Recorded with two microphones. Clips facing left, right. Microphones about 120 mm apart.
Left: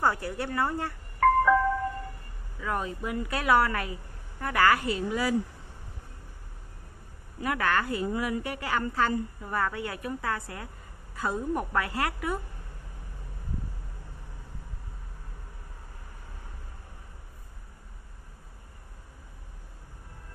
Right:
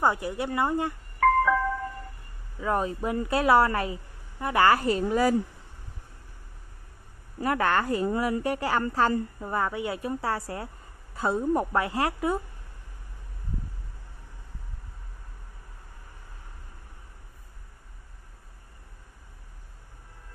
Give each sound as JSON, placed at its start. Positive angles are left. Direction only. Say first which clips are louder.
{"t": 0.0, "sound": "a woman's voice", "louder": "right 2 dB", "side_deg": -20}
{"t": 1.2, "sound": "music", "louder": "even", "side_deg": 5}
{"t": 2.6, "sound": "a woman's voice", "louder": "right 5 dB", "side_deg": -35}
{"t": 7.4, "sound": "a woman's voice", "louder": "right 3 dB", "side_deg": -35}
{"t": 9.4, "sound": "a woman's voice", "louder": "right 2 dB", "side_deg": -25}